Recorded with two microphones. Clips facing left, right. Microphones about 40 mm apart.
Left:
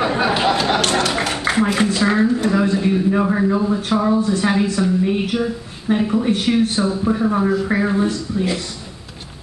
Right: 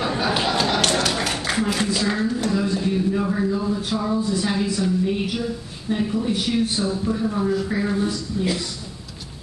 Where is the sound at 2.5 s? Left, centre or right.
Left.